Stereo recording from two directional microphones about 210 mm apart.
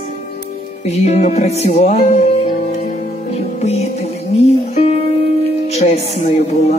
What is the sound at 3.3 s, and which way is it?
Music, 30° left (ahead or behind).